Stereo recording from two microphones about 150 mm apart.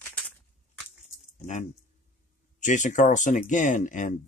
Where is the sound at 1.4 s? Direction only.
55° left (ahead or behind).